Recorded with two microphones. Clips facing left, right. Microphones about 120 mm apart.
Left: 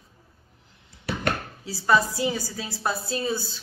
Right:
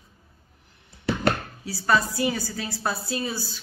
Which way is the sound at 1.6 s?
20° left (ahead or behind).